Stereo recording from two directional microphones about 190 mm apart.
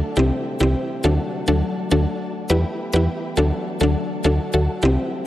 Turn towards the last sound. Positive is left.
turn(degrees=0)  # may be behind; listen again after turning